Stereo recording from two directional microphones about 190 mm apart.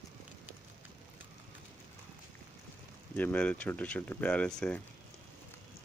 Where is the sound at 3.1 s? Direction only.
5° left (ahead or behind).